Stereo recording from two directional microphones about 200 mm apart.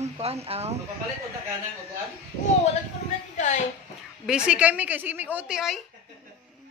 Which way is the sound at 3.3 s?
35° left (ahead or behind).